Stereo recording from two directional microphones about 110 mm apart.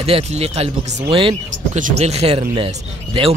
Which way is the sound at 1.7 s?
75° right (ahead or behind).